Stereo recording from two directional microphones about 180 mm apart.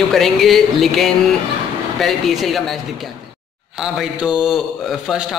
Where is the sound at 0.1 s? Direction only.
Centre (ahead or behind).